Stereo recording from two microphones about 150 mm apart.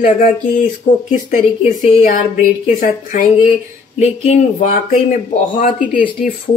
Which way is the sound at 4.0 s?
45° left (ahead or behind).